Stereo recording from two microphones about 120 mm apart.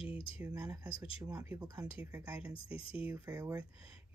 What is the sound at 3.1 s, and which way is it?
Speech, 25° right (ahead or behind).